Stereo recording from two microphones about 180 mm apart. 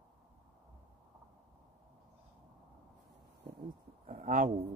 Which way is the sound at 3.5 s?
50° right (ahead or behind).